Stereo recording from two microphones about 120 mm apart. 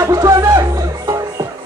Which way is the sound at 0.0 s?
25° right (ahead or behind).